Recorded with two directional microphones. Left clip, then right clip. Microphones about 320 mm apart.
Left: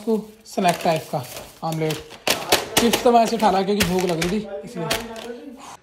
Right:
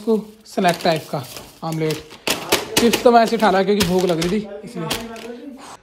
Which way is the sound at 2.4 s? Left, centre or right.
Centre.